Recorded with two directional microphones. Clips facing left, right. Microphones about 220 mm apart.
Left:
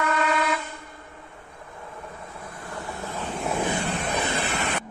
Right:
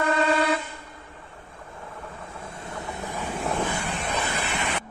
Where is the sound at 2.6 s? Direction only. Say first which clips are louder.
Even; 20° right (ahead or behind).